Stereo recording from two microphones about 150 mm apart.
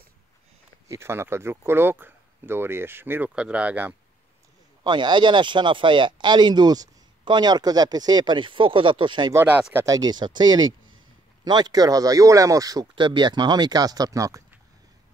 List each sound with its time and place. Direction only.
0.8 s speech: 15° right (ahead or behind)
4.8 s speech: 30° right (ahead or behind)
9.3 s speech: 15° right (ahead or behind)